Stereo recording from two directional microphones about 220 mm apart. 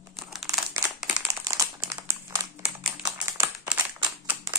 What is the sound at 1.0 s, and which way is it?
Crumpling, 10° right (ahead or behind).